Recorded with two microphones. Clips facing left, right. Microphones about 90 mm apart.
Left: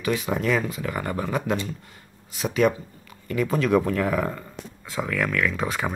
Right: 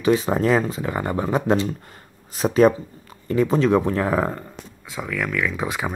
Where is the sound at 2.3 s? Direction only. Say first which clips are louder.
Right 6 dB; 35° right (ahead or behind).